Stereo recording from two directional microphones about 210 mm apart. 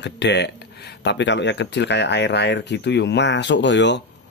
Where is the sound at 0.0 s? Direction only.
55° left (ahead or behind).